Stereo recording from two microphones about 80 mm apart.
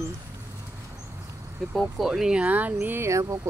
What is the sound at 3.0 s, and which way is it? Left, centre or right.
Speech, right.